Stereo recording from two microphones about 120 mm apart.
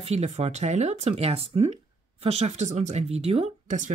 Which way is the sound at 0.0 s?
65° right (ahead or behind).